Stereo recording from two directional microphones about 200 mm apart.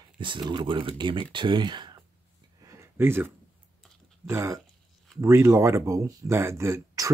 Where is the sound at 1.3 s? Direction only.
25° right (ahead or behind).